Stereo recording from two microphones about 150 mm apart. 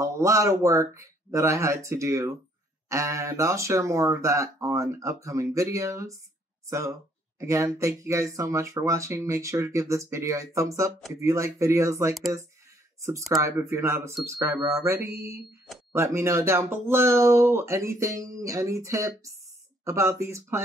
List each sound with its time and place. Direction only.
0.0 s speech: 20° right (ahead or behind)
7.3 s speech: 20° right (ahead or behind)
13.3 s speech: 20° right (ahead or behind)